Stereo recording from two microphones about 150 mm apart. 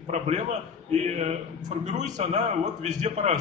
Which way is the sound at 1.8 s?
50° right (ahead or behind).